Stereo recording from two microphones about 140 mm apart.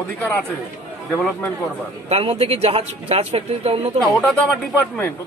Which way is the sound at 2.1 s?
45° right (ahead or behind).